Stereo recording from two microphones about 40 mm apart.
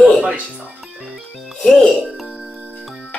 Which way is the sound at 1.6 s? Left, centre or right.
Centre.